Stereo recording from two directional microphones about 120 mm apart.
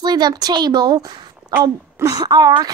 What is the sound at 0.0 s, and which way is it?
A child's voice, 35° right (ahead or behind).